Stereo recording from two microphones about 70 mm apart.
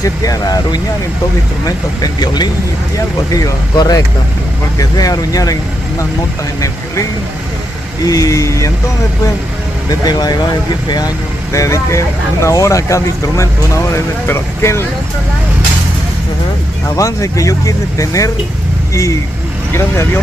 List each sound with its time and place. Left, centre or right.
0.0 s speech: left
2.0 s speech: left
3.7 s speech: left
8.0 s speech: left
9.8 s speech: left
11.5 s speech: left
16.8 s speech: left